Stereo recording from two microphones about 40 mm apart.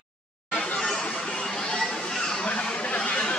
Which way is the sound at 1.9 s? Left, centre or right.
Centre.